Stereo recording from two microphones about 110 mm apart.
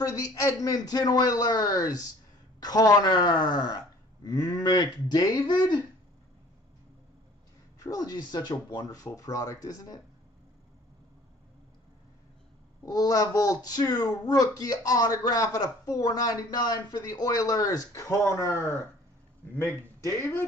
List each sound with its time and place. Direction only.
0.0 s speech: 35° left (ahead or behind)
7.8 s speech: 35° left (ahead or behind)
12.8 s speech: 35° left (ahead or behind)